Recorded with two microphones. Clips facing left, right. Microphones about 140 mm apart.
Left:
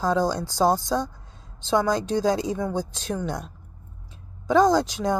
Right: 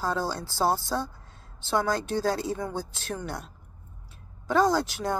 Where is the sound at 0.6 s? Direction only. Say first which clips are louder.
Left 4 dB; 5° right (ahead or behind).